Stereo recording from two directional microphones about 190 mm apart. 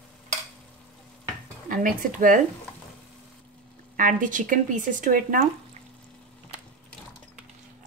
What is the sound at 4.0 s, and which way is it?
Speech, 45° right (ahead or behind).